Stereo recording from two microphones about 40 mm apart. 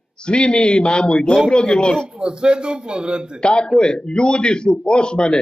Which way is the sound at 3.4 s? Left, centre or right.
Left.